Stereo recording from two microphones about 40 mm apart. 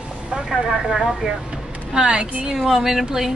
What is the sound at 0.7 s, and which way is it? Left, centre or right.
A woman's voice, centre.